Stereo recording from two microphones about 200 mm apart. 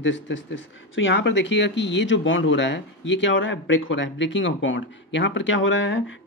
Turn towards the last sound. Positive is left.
turn(degrees=70)  # may be behind; listen again after turning